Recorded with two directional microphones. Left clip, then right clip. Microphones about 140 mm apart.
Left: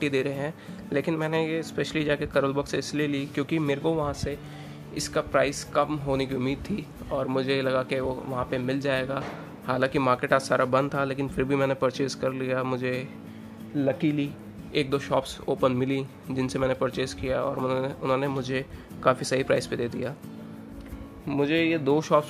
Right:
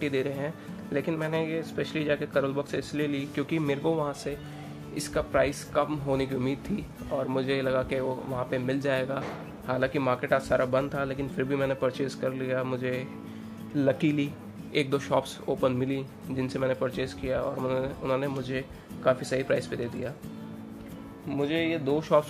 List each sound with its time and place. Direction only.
0.0 s speech: 20° left (ahead or behind)
9.7 s speech: 25° left (ahead or behind)
13.7 s speech: 5° right (ahead or behind)
15.4 s speech: 25° left (ahead or behind)
21.3 s music: 45° left (ahead or behind)